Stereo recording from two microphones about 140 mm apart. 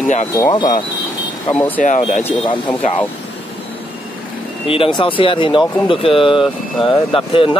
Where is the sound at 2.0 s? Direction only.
50° left (ahead or behind).